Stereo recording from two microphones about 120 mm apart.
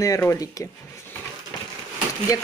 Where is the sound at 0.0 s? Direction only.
25° left (ahead or behind).